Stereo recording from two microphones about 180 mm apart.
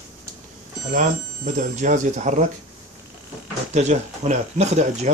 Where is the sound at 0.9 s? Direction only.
45° right (ahead or behind).